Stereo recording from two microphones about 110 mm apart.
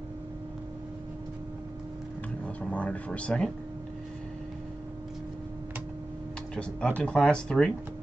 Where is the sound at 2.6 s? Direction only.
10° left (ahead or behind).